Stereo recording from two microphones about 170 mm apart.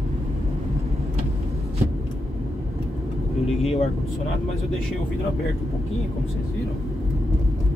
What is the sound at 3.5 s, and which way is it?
Vehicle, 35° left (ahead or behind).